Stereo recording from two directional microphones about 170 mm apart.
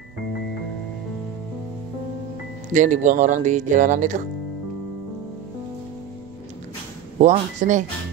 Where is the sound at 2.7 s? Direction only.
45° right (ahead or behind).